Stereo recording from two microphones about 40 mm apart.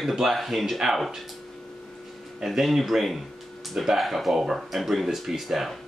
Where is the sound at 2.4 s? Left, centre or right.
Centre.